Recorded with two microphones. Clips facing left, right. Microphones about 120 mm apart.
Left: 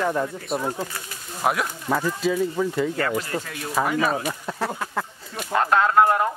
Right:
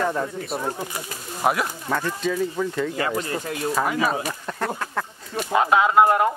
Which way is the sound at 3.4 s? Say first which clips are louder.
Right 7 dB; 35° right (ahead or behind).